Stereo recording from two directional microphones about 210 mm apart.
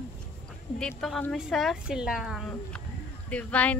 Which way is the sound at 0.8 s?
5° left (ahead or behind).